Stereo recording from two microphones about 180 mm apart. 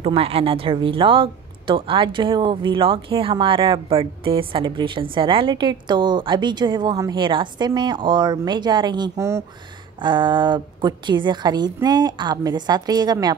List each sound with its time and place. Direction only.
0.0 s speech: 30° right (ahead or behind)